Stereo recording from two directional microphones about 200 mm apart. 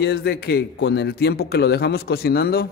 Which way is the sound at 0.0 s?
55° left (ahead or behind).